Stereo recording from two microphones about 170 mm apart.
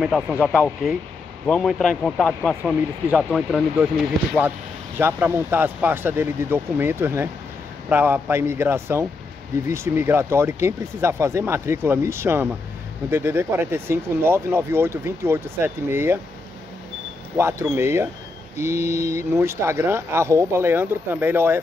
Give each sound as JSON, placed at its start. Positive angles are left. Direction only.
{"t": 0.0, "sound": "speech", "side_deg": -5}
{"t": 17.4, "sound": "speech", "side_deg": -15}